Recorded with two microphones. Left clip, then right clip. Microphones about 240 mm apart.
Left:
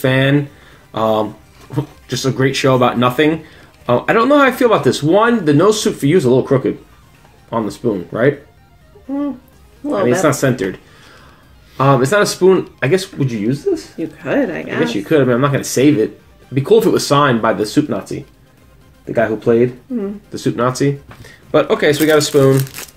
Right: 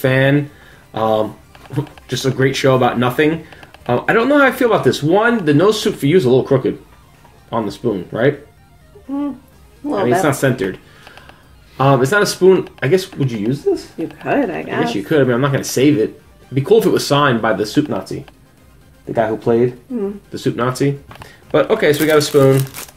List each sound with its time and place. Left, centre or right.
0.0 s speech: centre
13.9 s speech: centre
14.9 s speech: centre
19.1 s speech: centre